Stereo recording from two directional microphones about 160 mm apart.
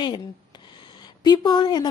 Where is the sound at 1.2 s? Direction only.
30° left (ahead or behind).